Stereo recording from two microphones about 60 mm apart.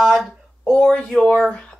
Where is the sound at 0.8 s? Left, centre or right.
Centre.